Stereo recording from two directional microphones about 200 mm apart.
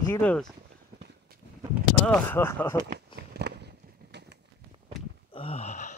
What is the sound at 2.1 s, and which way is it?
Speech, 10° left (ahead or behind).